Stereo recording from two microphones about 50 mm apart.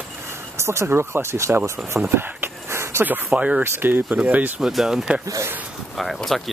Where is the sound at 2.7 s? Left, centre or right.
Right.